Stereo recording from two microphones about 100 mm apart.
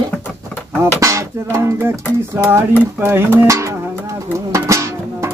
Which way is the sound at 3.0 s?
25° right (ahead or behind).